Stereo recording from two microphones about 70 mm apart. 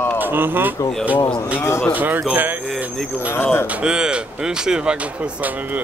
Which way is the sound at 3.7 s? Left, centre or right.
Centre.